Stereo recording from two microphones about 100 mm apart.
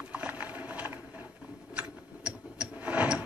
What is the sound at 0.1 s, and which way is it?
Ratchet, 15° right (ahead or behind).